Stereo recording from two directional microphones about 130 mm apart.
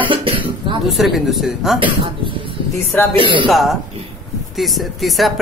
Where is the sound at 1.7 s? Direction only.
40° right (ahead or behind).